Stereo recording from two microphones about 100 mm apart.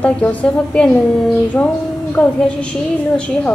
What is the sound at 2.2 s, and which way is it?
Speech, 10° left (ahead or behind).